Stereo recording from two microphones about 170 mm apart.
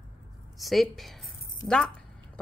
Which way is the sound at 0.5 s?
Centre (ahead or behind).